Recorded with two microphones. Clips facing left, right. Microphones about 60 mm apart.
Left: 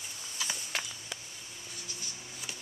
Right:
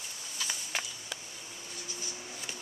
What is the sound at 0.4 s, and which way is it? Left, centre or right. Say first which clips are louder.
Walk: even; centre.